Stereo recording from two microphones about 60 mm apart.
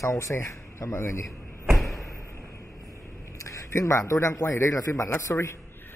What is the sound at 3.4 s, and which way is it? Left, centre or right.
A man's voice, left.